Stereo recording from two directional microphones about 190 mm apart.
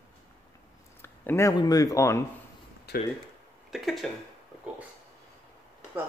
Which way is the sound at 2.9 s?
55° left (ahead or behind).